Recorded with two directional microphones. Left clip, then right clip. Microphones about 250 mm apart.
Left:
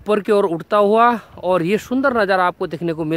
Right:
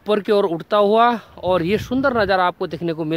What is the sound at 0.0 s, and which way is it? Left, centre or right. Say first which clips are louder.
Speech: left 1 dB; centre.